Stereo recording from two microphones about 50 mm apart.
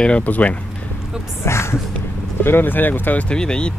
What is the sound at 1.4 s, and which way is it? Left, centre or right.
Speech, left.